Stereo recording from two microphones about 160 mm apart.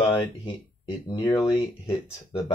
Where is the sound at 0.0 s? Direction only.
30° left (ahead or behind).